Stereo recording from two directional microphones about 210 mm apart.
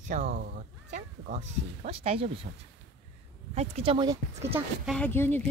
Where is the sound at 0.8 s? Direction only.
35° right (ahead or behind).